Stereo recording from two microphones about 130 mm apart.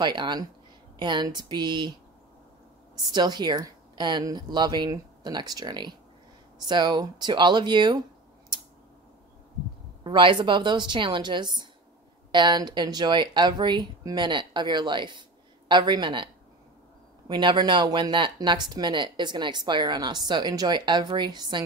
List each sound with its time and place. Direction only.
0.0 s speech: 35° right (ahead or behind)
3.1 s speech: 35° right (ahead or behind)
10.0 s speech: 40° right (ahead or behind)
17.3 s speech: 35° right (ahead or behind)